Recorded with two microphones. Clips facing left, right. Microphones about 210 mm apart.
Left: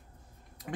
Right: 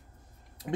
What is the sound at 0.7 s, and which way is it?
Speech, 20° right (ahead or behind).